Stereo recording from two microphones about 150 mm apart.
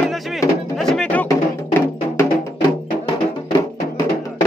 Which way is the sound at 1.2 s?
15° left (ahead or behind).